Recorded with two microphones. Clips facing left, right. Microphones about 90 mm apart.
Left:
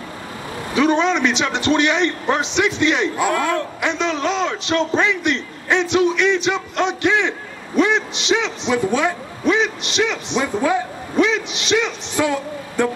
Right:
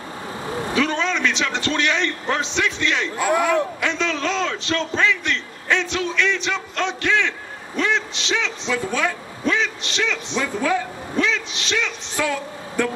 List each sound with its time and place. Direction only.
0.7 s a man's voice: 20° left (ahead or behind)
3.3 s speech: 15° right (ahead or behind)
3.8 s a man's voice: 15° left (ahead or behind)